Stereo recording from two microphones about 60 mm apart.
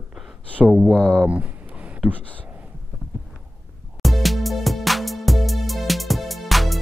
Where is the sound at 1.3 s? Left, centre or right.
Right.